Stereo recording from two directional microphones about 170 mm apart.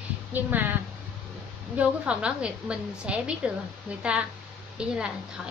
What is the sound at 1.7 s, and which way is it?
A woman's voice, 5° right (ahead or behind).